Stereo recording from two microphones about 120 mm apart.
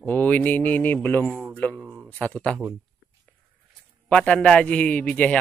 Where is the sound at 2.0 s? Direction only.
10° left (ahead or behind).